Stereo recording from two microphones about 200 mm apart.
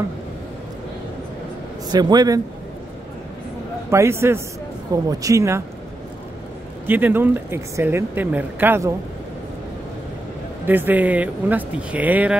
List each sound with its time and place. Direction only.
1.9 s a man's voice: 20° right (ahead or behind)
3.9 s a woman's voice: 15° right (ahead or behind)
6.9 s a woman's voice: 10° right (ahead or behind)
10.7 s a woman's voice: 10° right (ahead or behind)